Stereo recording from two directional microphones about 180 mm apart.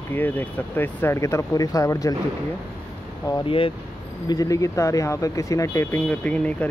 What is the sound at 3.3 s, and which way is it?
Speech, 30° left (ahead or behind).